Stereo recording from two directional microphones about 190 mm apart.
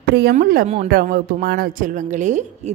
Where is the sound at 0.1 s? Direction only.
60° right (ahead or behind).